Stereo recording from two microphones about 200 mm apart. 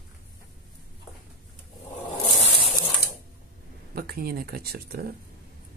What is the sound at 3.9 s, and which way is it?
Speech, 50° right (ahead or behind).